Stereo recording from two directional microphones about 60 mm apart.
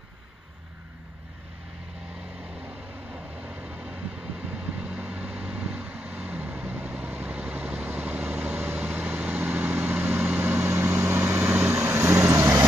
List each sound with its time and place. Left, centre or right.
3.1 s vehicle: right